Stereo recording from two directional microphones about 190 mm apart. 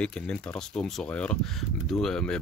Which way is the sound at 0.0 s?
5° left (ahead or behind).